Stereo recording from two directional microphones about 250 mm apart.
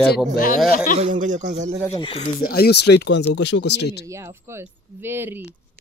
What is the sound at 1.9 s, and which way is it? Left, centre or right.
Speech, left.